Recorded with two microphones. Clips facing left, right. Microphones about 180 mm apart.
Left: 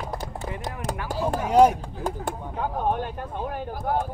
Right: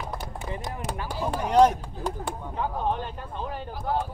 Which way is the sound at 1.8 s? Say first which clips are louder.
Left 2 dB; 45° left (ahead or behind).